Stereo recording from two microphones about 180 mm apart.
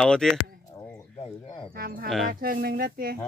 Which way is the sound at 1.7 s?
55° right (ahead or behind).